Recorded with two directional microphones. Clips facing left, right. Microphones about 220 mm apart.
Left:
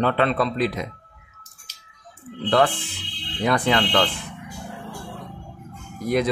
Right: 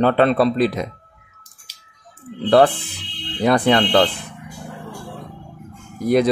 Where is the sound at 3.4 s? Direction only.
35° right (ahead or behind).